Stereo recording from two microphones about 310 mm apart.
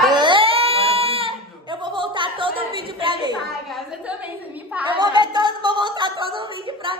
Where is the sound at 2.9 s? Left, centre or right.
Centre.